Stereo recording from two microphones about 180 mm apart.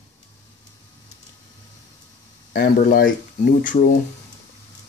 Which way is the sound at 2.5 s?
55° left (ahead or behind).